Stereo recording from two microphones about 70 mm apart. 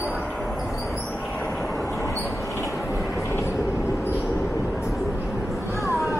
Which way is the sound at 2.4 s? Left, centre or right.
Left.